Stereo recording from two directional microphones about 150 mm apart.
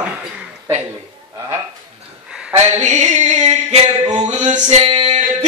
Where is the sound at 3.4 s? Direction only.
45° right (ahead or behind).